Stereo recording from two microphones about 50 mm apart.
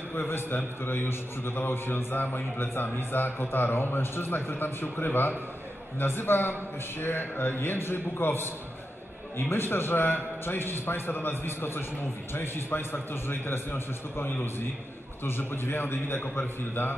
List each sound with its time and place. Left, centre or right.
0.1 s a man's voice: left